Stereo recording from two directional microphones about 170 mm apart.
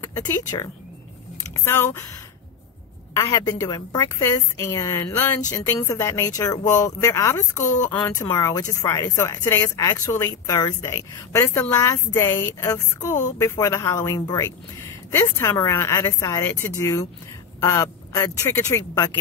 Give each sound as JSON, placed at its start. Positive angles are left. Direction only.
{"t": 0.0, "sound": "speech", "side_deg": 15}
{"t": 3.2, "sound": "speech", "side_deg": 20}